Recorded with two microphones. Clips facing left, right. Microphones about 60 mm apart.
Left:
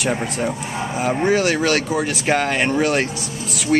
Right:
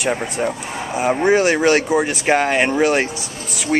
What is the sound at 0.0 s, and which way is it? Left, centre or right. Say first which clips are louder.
Speech: right 1 dB; centre.